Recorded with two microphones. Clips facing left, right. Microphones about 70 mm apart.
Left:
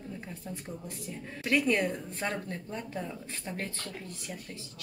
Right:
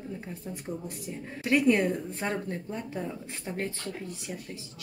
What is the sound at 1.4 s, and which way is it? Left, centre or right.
A woman's voice, centre.